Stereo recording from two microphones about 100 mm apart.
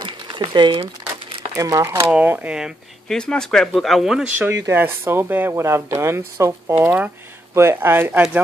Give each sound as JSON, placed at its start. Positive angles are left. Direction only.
{"t": 0.0, "sound": "a sound", "side_deg": -50}
{"t": 1.5, "sound": "speech", "side_deg": -35}
{"t": 2.0, "sound": "speech", "side_deg": -15}
{"t": 3.1, "sound": "speech", "side_deg": 5}
{"t": 4.5, "sound": "speech", "side_deg": -25}
{"t": 6.8, "sound": "speech", "side_deg": -15}